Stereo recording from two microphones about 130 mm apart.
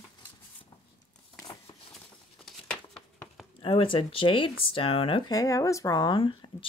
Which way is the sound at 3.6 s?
40° left (ahead or behind).